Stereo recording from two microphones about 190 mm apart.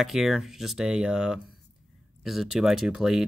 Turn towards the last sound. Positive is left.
turn(degrees=0)  # may be behind; listen again after turning